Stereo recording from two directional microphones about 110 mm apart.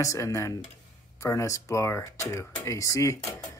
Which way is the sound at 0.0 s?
30° left (ahead or behind).